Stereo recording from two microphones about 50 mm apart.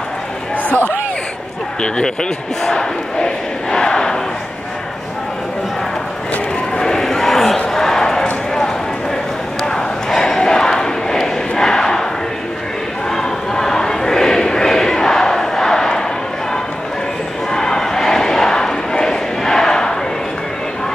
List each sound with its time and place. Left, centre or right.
1.8 s speech: centre
2.6 s battle cry: centre
6.8 s a sound: centre
9.6 s battle cry: centre
13.1 s crowd: centre
17.5 s crowd: centre